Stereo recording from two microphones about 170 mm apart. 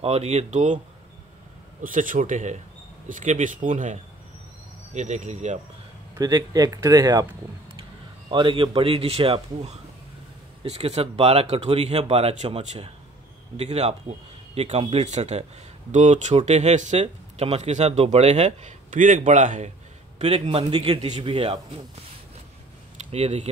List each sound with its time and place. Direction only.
0.0 s speech: 40° right (ahead or behind)
1.8 s speech: 50° right (ahead or behind)
6.1 s speech: 20° right (ahead or behind)
8.3 s speech: 30° right (ahead or behind)
23.1 s speech: 40° right (ahead or behind)